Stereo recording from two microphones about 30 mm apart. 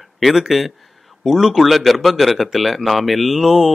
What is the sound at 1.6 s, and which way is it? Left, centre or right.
A man's voice, centre.